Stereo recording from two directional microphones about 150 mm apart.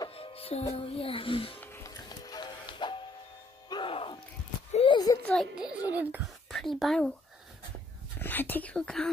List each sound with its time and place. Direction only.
0.1 s music: 40° left (ahead or behind)
0.7 s a child's voice: 40° left (ahead or behind)
1.6 s music: 15° left (ahead or behind)
2.0 s music: 25° left (ahead or behind)
4.7 s a sound: 30° left (ahead or behind)
5.2 s a sound: 5° left (ahead or behind)
5.9 s speech: 10° right (ahead or behind)
6.5 s speech: centre (ahead or behind)
8.2 s speech: 15° left (ahead or behind)